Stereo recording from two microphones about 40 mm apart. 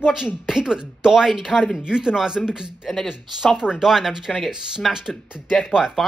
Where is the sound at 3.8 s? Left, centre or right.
Centre.